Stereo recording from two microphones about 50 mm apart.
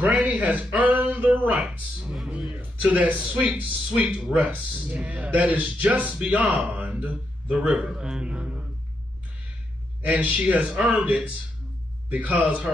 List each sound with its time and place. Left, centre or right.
0.1 s a man's voice: right
0.7 s a sound: right
1.3 s speech: right
2.0 s a sound: centre
2.8 s a man's voice: right
7.9 s a man's voice: centre
10.0 s a man's voice: right
12.1 s a man's voice: right